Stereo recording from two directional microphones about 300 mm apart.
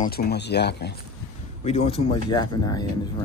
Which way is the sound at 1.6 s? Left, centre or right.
Centre.